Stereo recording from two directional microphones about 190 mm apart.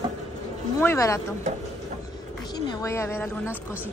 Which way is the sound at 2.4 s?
20° left (ahead or behind).